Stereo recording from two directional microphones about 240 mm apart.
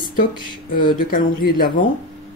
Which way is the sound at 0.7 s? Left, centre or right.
Left.